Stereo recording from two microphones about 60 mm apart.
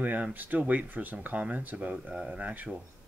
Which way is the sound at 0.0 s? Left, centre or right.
Right.